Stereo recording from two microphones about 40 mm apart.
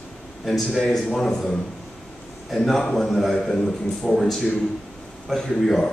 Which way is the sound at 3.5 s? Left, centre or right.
Centre.